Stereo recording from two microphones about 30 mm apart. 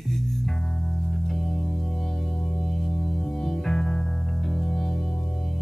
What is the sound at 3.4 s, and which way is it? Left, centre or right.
Music, centre.